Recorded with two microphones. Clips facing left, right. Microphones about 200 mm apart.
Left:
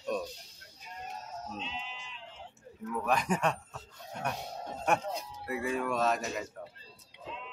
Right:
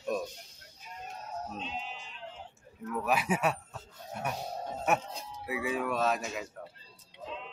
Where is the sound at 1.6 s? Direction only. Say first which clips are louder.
Right 2 dB; 45° right (ahead or behind).